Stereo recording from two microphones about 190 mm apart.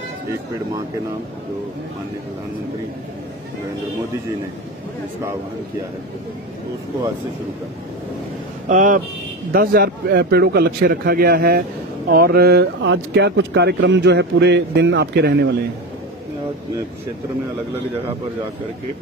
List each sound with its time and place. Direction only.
8.6 s speech: 45° right (ahead or behind); by 15.5 s 60° right (ahead or behind)